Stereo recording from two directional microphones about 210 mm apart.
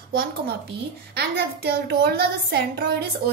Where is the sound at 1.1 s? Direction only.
50° right (ahead or behind).